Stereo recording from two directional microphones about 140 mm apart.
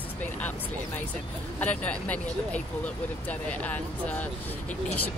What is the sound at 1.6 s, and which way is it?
Speech, 10° left (ahead or behind).